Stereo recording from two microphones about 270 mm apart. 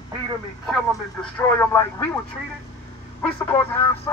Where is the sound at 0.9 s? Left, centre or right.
Centre.